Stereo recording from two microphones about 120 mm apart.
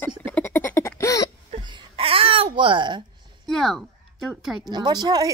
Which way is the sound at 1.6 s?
45° right (ahead or behind).